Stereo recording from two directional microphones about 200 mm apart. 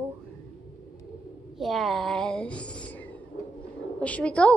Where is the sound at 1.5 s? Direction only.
Centre (ahead or behind).